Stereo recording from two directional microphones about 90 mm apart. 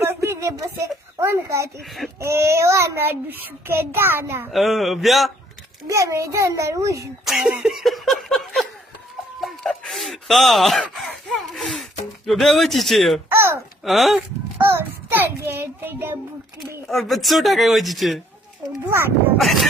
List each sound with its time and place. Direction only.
0.0 s a woman's voice: 30° right (ahead or behind)
4.5 s speech: centre (ahead or behind)
5.9 s a child's voice: 35° right (ahead or behind)
7.6 s speech: centre (ahead or behind)
9.4 s a sound: 5° left (ahead or behind)
11.5 s gasp: 10° left (ahead or behind)
12.3 s speech: centre (ahead or behind)
13.3 s a sound: 25° right (ahead or behind)
13.8 s speech: centre (ahead or behind)
14.6 s a sound: 25° right (ahead or behind)
16.9 s speech: centre (ahead or behind)
18.9 s a child's voice: 25° right (ahead or behind)
19.3 s speech: centre (ahead or behind)